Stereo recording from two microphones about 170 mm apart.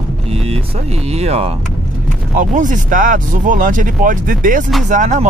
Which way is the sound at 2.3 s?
50° right (ahead or behind).